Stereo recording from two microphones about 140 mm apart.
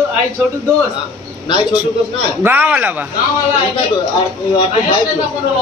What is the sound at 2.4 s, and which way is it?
Speech, 10° right (ahead or behind).